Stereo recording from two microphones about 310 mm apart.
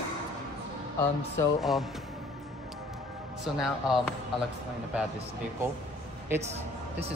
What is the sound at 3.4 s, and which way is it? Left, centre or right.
Speech, centre.